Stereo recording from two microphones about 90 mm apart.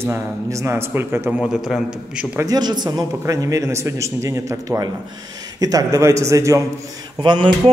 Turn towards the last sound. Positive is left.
turn(degrees=-60)  # may be behind; listen again after turning